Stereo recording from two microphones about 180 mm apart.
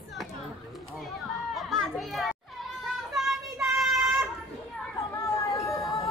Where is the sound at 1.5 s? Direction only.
Centre (ahead or behind).